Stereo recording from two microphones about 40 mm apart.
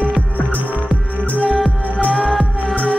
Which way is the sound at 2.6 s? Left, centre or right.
Left.